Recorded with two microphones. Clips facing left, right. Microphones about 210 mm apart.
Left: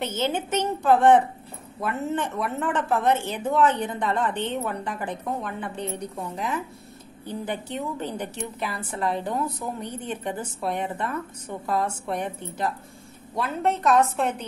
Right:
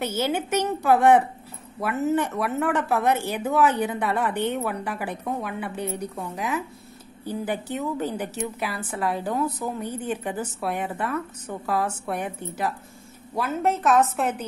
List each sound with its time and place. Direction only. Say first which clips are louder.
0.0 s a woman's voice: right 1 dB; 10° right (ahead or behind)